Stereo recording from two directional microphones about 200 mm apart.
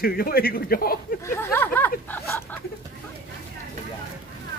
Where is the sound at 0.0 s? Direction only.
50° left (ahead or behind).